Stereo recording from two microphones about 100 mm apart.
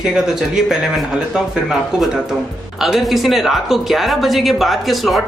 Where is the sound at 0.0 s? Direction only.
5° right (ahead or behind).